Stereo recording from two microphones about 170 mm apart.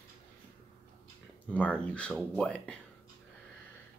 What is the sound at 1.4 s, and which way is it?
Speech, 5° left (ahead or behind).